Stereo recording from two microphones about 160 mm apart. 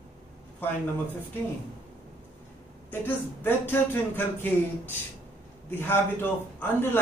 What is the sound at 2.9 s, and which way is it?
Speech, 15° left (ahead or behind).